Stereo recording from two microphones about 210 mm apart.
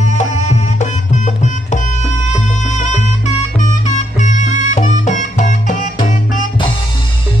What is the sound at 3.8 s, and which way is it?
Music, 35° left (ahead or behind).